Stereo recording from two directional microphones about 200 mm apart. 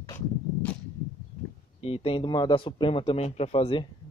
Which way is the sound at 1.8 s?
30° left (ahead or behind).